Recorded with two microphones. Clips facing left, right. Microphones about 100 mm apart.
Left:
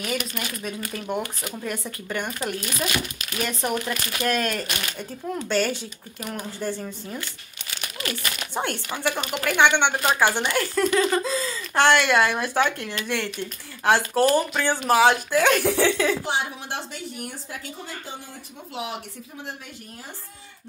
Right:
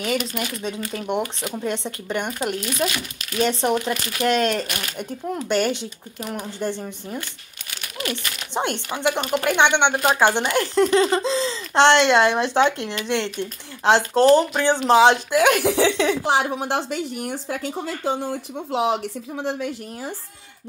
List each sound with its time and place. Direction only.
0.0 s speech: 25° right (ahead or behind)
16.4 s speech: 60° right (ahead or behind); by 19.7 s 80° right